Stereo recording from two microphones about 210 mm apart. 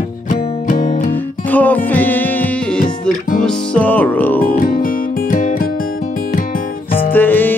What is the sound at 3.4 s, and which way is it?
Music, 5° left (ahead or behind).